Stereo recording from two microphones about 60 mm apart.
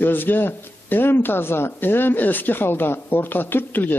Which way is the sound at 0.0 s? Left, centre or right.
Left.